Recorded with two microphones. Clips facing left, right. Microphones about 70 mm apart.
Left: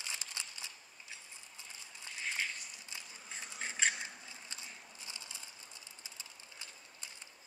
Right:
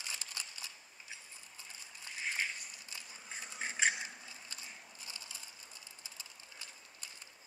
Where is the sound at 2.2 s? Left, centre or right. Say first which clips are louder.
Right 1 dB; centre.